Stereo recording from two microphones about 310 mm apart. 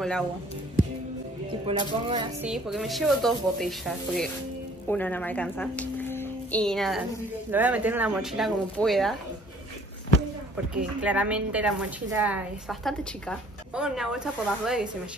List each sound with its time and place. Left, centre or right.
1.7 s speech: centre
2.4 s a woman's voice: centre
10.8 s a woman's voice: centre